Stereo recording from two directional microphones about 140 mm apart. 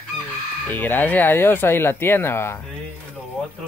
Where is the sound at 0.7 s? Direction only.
15° left (ahead or behind).